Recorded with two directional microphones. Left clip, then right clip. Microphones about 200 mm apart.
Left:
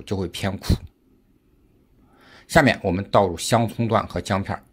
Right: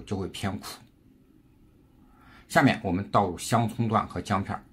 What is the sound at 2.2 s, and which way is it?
Speech, 40° left (ahead or behind).